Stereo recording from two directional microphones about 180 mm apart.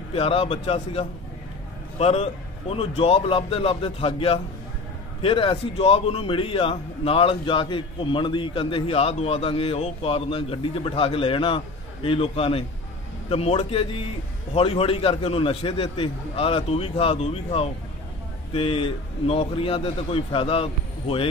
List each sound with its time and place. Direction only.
0.1 s a man's voice: 35° left (ahead or behind)